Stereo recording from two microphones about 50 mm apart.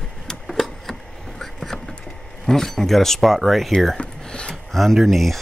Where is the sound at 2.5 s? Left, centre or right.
Centre.